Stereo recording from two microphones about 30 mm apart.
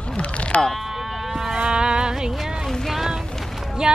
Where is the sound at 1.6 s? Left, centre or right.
Right.